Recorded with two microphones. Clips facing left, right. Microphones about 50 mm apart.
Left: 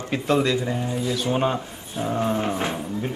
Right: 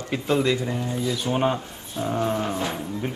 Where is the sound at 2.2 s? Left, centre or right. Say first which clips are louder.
Left 2 dB; left.